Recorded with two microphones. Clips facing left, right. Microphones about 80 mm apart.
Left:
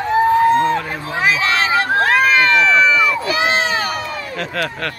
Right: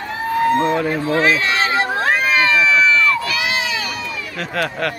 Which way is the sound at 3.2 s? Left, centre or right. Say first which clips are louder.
Left 4 dB; left.